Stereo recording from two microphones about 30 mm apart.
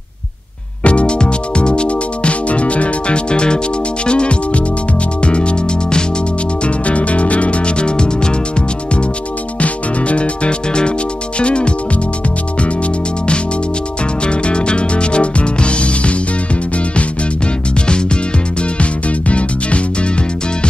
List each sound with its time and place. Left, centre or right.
0.8 s music: left
6.6 s music: left
9.6 s music: left
14.2 s music: left
18.6 s music: left